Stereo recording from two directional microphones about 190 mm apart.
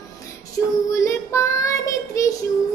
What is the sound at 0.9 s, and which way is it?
Female singing, 15° left (ahead or behind).